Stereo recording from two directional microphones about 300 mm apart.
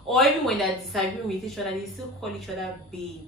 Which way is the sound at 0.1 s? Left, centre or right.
Centre.